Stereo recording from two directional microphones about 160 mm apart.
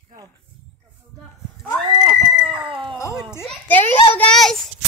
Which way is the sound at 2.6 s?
30° right (ahead or behind).